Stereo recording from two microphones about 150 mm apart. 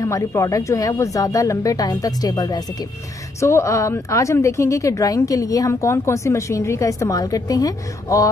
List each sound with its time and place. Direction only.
0.0 s a woman's voice: 20° left (ahead or behind)